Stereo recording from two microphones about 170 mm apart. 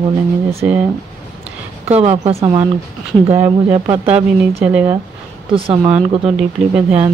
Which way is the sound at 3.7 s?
30° right (ahead or behind).